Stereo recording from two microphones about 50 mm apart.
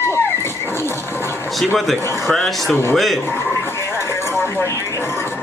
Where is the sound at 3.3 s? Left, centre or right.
Left.